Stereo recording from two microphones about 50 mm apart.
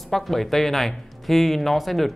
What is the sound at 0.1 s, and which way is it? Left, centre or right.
Speech, centre.